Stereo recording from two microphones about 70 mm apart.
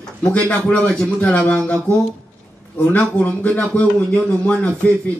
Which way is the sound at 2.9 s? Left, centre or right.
Left.